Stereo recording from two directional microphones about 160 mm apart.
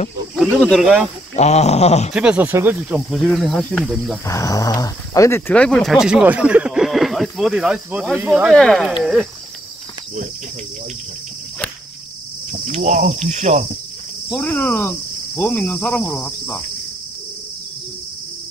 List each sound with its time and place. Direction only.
0.4 s speech: 5° left (ahead or behind)
1.3 s a sound: 45° left (ahead or behind)
2.1 s speech: 5° right (ahead or behind)
3.1 s speech: centre (ahead or behind)
4.3 s speech: 20° left (ahead or behind)
5.5 s speech: 5° left (ahead or behind)
9.0 s cricket: centre (ahead or behind)
12.4 s cricket: 55° right (ahead or behind)
14.3 s speech: 10° left (ahead or behind)